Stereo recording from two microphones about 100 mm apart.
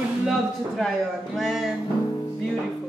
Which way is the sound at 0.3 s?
Centre (ahead or behind).